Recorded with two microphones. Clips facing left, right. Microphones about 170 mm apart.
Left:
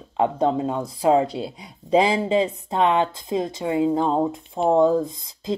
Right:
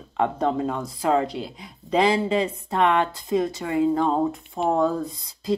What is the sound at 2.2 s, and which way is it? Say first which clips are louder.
A woman's voice: left 2 dB; 25° left (ahead or behind).